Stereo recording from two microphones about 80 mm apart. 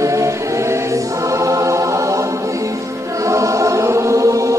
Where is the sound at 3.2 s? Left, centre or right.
Right.